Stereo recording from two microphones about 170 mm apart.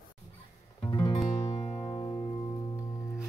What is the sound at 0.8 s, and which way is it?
Music, 25° left (ahead or behind).